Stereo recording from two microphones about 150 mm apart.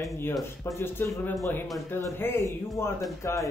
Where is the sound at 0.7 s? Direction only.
15° left (ahead or behind).